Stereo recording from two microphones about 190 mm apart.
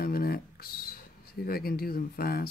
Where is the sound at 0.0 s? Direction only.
50° left (ahead or behind).